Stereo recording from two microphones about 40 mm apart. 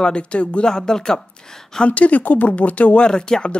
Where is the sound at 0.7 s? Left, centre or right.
Centre.